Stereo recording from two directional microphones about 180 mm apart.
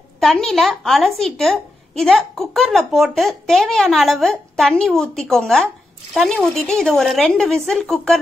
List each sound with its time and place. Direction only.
0.2 s a woman's voice: centre (ahead or behind)